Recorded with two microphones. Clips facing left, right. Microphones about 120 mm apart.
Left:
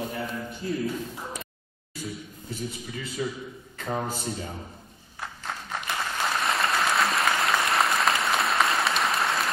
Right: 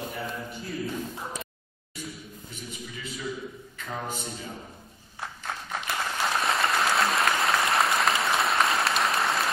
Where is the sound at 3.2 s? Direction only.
40° left (ahead or behind).